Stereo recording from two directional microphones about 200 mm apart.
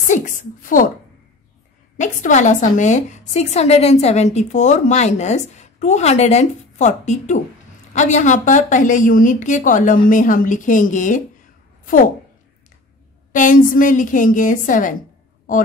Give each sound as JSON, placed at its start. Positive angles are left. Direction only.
{"t": 0.1, "sound": "a woman's voice", "side_deg": 40}
{"t": 2.0, "sound": "a woman's voice", "side_deg": 40}
{"t": 13.3, "sound": "a woman's voice", "side_deg": 40}